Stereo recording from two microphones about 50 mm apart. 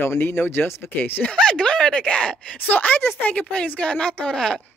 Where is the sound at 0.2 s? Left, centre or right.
Left.